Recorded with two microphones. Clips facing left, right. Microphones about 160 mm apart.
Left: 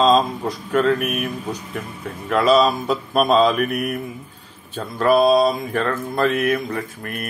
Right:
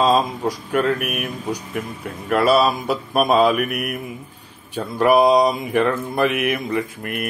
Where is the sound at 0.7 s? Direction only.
10° right (ahead or behind).